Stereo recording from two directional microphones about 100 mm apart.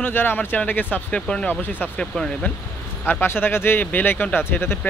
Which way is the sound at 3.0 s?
20° left (ahead or behind).